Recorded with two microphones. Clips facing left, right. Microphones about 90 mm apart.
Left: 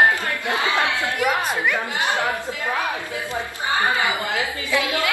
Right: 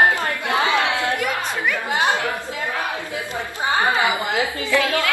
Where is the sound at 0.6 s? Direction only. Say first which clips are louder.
Right 2 dB; 20° right (ahead or behind).